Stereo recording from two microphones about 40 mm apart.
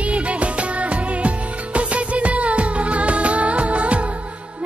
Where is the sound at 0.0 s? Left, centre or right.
Right.